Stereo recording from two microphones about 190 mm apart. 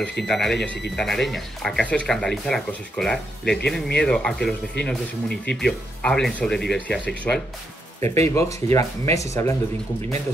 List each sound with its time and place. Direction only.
0.2 s speech: centre (ahead or behind)
8.0 s speech: 15° left (ahead or behind)